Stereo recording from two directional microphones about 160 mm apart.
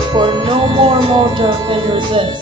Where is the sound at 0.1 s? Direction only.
30° right (ahead or behind).